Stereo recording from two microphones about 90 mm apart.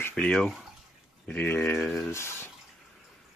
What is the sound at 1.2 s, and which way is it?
Speech, 20° left (ahead or behind).